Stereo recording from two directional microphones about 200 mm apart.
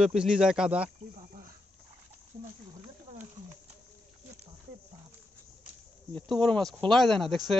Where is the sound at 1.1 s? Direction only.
35° right (ahead or behind).